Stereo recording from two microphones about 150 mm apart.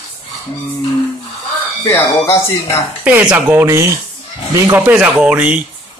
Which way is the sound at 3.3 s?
15° right (ahead or behind).